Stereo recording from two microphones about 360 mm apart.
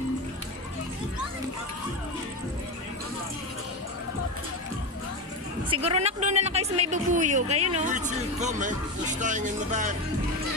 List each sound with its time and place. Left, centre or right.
5.7 s speech: centre